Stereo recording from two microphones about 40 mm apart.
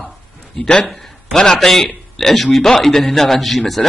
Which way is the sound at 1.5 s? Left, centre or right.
Centre.